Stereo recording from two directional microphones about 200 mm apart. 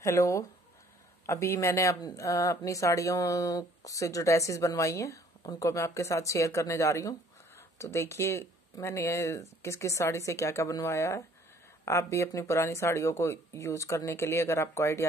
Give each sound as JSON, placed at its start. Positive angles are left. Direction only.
{"t": 0.0, "sound": "speech", "side_deg": 15}